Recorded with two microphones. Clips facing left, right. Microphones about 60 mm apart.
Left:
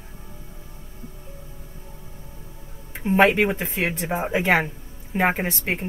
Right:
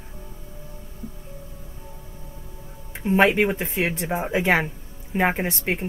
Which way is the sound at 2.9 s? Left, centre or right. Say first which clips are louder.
Left 1 dB; centre.